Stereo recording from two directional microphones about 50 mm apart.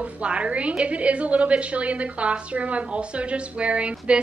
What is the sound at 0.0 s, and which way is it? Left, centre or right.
A woman's voice, right.